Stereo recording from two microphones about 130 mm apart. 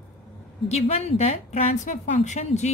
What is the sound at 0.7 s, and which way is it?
A woman's voice, 60° left (ahead or behind).